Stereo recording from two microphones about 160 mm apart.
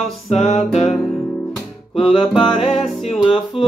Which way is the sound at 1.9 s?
35° left (ahead or behind).